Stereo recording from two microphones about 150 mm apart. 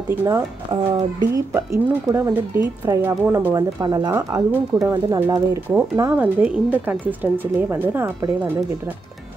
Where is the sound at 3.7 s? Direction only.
25° right (ahead or behind).